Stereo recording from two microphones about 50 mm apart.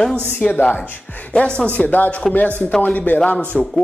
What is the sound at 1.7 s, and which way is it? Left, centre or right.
Speech, left.